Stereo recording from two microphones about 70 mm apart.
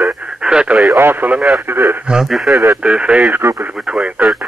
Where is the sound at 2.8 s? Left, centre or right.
Centre.